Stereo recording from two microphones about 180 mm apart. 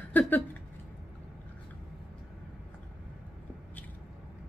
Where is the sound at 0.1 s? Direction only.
10° left (ahead or behind).